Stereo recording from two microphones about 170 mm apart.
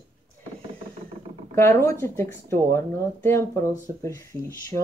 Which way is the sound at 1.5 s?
15° left (ahead or behind).